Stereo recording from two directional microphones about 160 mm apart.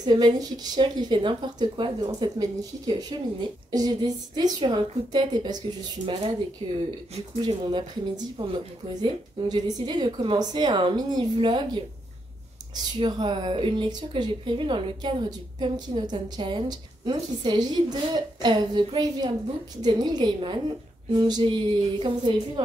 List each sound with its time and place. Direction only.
0.0 s a woman's voice: 25° right (ahead or behind)
6.6 s a woman's voice: 30° right (ahead or behind)
13.0 s a woman's voice: 30° right (ahead or behind)